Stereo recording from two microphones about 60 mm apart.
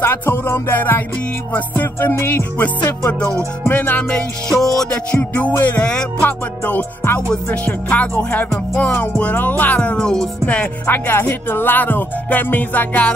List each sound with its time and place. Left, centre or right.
0.0 s music: left
3.1 s music: left
4.5 s music: centre
4.9 s music: left
7.2 s music: centre
10.4 s music: left
11.1 s music: left